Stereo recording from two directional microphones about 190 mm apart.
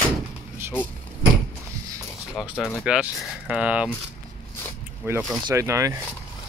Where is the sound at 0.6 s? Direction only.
10° right (ahead or behind).